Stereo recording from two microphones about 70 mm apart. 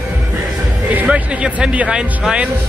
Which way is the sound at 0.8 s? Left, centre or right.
Right.